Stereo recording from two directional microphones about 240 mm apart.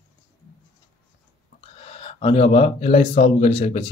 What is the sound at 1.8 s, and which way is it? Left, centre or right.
Speech, left.